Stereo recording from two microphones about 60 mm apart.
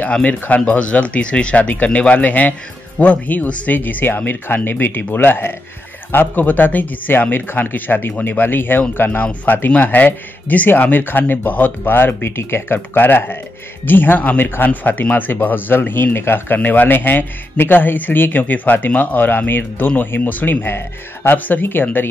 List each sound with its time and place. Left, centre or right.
0.1 s speech: left